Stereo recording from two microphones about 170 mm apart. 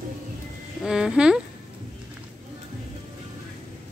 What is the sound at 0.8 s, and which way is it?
Speech, 5° right (ahead or behind).